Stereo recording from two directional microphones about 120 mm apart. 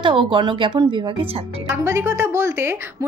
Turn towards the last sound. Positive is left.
turn(degrees=-20)  # may be behind; listen again after turning